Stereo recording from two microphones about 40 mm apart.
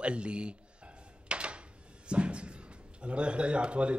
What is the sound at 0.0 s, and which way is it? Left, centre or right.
Speech, right.